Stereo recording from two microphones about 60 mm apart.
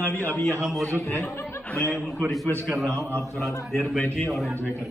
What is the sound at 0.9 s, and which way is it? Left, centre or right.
Speech, left.